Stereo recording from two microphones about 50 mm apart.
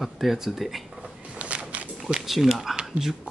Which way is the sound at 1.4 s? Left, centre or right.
Right.